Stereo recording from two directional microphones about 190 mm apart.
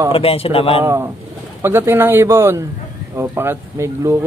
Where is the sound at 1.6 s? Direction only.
10° right (ahead or behind).